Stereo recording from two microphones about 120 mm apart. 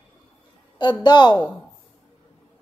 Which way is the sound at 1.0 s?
40° left (ahead or behind).